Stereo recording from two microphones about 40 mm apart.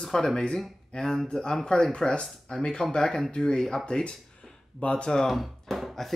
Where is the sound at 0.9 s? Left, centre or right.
Left.